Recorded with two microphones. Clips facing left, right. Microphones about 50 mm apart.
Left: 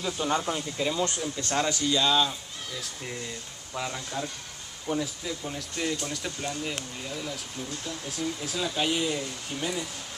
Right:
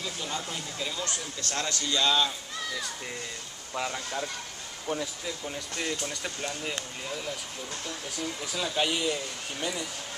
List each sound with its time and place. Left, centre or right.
0.0 s speech: left
0.4 s speech: left; by 2.3 s centre
3.7 s speech: centre
4.9 s speech: right
5.5 s speech: centre
6.7 s speech: right
8.5 s speech: centre